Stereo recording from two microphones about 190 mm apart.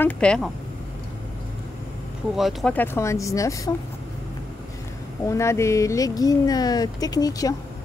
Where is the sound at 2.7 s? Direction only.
10° left (ahead or behind).